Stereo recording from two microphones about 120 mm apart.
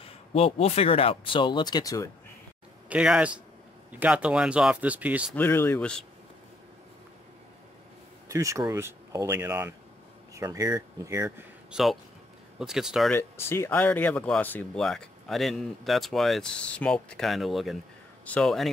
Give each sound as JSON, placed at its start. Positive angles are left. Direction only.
{"t": 0.0, "sound": "speech", "side_deg": 55}
{"t": 2.9, "sound": "speech", "side_deg": -10}
{"t": 5.3, "sound": "speech", "side_deg": 20}
{"t": 8.3, "sound": "speech", "side_deg": -25}
{"t": 11.2, "sound": "speech", "side_deg": -10}
{"t": 13.2, "sound": "speech", "side_deg": 20}
{"t": 14.8, "sound": "speech", "side_deg": 5}